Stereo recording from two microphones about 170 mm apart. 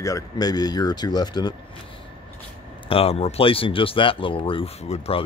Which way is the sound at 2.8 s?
35° left (ahead or behind).